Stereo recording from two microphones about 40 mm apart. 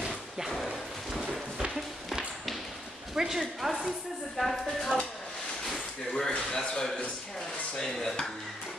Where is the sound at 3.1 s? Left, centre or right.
Centre.